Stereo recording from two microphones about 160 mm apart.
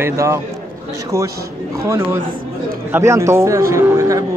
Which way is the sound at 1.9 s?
15° right (ahead or behind).